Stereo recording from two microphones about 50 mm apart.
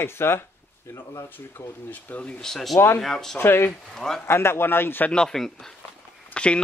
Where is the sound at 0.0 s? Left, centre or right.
Left.